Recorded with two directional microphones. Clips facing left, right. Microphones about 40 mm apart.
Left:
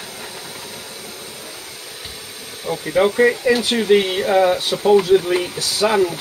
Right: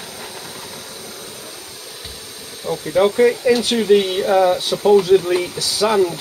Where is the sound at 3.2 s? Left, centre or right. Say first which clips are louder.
Right 1 dB; left.